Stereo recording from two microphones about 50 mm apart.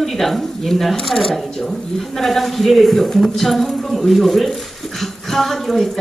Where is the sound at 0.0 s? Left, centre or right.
Centre.